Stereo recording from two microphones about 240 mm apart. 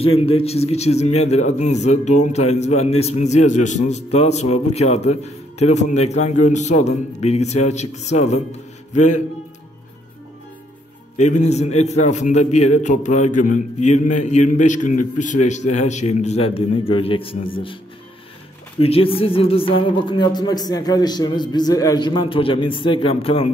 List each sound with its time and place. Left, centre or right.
0.0 s a man's voice: left
11.1 s a man's voice: left
18.8 s a man's voice: left